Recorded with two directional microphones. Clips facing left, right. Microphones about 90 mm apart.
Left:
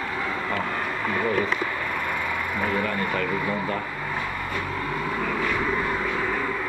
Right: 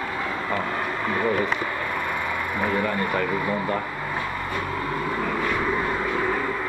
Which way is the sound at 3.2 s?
5° right (ahead or behind).